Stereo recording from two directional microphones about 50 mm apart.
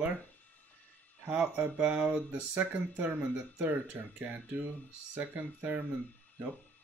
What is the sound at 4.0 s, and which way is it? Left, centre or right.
Speech, right.